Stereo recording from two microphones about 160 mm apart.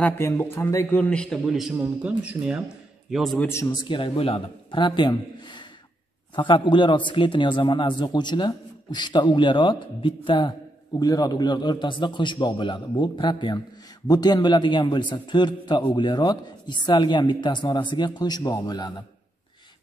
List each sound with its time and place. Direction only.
0.0 s a man's voice: 15° left (ahead or behind)
3.4 s a man's voice: 15° left (ahead or behind)
3.8 s a man's voice: 30° left (ahead or behind)